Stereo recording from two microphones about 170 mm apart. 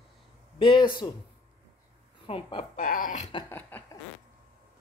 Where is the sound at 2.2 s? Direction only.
30° left (ahead or behind).